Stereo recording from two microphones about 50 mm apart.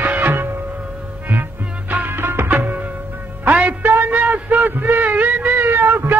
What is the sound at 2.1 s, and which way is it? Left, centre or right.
Music, right.